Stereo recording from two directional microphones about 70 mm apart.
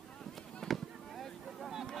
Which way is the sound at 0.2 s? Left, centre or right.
Centre.